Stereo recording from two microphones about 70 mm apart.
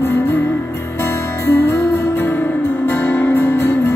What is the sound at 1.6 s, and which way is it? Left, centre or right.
Music, left.